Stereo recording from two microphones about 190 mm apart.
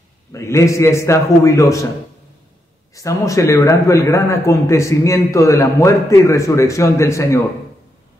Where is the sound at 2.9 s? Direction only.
15° left (ahead or behind).